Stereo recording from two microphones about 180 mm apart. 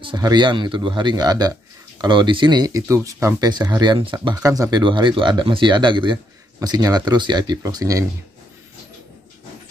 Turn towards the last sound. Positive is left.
turn(degrees=-20)  # may be behind; listen again after turning